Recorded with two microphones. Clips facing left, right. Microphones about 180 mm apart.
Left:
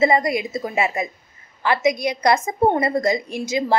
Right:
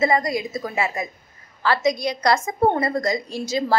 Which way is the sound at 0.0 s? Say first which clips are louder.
Left 3 dB; 25° left (ahead or behind).